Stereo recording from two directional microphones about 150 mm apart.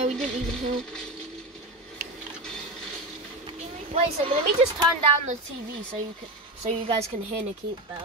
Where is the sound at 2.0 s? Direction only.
80° right.